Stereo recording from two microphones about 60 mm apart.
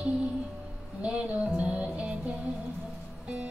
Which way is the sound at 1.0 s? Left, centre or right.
Centre.